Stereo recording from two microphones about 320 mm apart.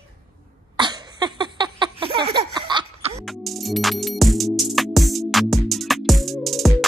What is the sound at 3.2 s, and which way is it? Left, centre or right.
Music, centre.